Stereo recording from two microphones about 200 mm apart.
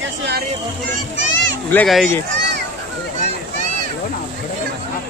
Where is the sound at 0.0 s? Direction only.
55° right (ahead or behind).